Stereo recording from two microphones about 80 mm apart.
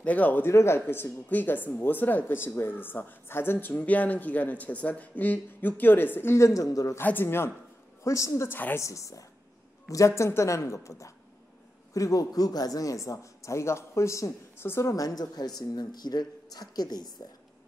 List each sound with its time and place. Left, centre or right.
0.0 s speech: centre
0.5 s speech: left
7.0 s speech: left
8.0 s a man's voice: left
8.5 s speech: left
8.7 s a man's voice: left
14.9 s a woman's voice: left